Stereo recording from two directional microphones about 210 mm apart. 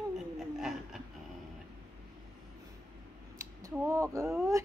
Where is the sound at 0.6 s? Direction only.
Centre (ahead or behind).